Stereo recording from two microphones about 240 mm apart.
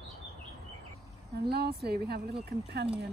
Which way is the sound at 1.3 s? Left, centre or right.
Right.